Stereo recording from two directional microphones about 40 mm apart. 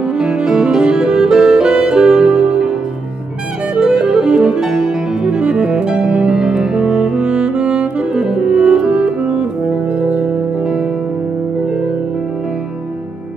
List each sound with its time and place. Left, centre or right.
0.2 s music: centre
3.8 s music: centre
9.9 s music: right